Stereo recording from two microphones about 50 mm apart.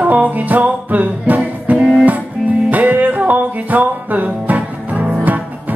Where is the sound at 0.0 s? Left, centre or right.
Right.